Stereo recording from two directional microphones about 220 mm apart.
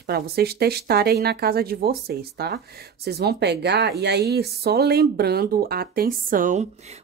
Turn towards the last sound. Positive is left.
turn(degrees=-35)  # may be behind; listen again after turning